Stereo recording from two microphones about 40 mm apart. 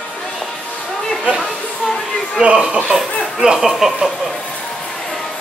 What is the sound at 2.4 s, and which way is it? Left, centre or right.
Speech, right.